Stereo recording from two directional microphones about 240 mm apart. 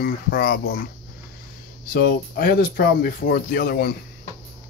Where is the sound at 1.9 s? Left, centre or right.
Left.